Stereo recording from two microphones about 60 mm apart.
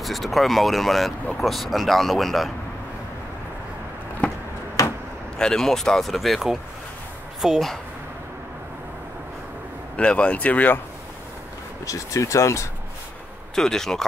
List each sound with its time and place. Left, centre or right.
0.0 s speech: centre
5.4 s speech: centre
9.9 s speech: centre
11.8 s speech: left
13.6 s speech: centre